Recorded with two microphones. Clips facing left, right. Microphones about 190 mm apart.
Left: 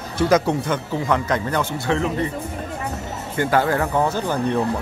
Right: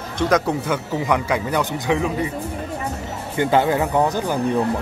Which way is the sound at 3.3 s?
20° right (ahead or behind).